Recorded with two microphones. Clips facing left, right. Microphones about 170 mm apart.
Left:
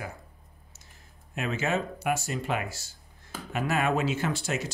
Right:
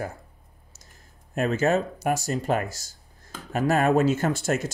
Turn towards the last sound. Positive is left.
turn(degrees=-45)  # may be behind; listen again after turning